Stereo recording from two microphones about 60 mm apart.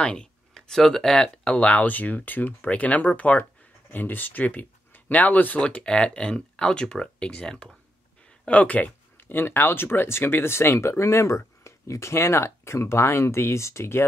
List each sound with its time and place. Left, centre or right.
0.0 s speech: centre
8.5 s a sound: left
9.4 s speech: left